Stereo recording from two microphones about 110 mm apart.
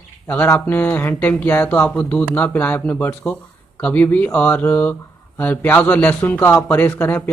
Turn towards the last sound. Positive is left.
turn(degrees=20)  # may be behind; listen again after turning